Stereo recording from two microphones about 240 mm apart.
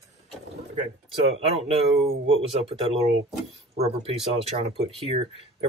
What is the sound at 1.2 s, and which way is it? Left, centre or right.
Speech, right.